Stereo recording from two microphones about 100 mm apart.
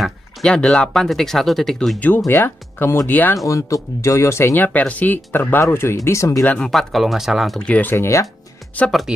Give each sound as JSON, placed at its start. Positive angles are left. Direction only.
{"t": 0.0, "sound": "speech", "side_deg": 5}
{"t": 2.0, "sound": "speech", "side_deg": 15}
{"t": 3.4, "sound": "speech", "side_deg": 30}
{"t": 4.6, "sound": "speech", "side_deg": 15}
{"t": 6.4, "sound": "speech", "side_deg": 15}
{"t": 6.7, "sound": "speech", "side_deg": 0}
{"t": 7.6, "sound": "speech", "side_deg": 15}
{"t": 7.9, "sound": "speech", "side_deg": 30}